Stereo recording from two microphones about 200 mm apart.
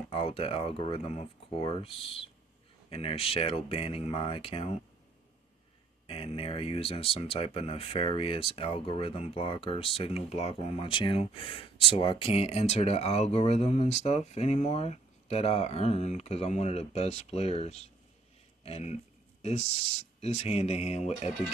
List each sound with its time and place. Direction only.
0.1 s speech: 30° left (ahead or behind)
6.0 s speech: 30° left (ahead or behind)